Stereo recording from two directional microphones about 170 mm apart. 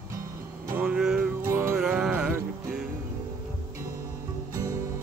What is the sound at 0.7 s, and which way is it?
Music, 10° right (ahead or behind).